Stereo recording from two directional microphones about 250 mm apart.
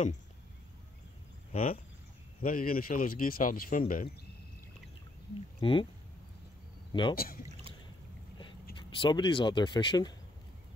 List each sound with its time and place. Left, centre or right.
1.5 s speech: left
5.6 s speech: left
6.9 s speech: centre
7.2 s speech: left
8.9 s speech: centre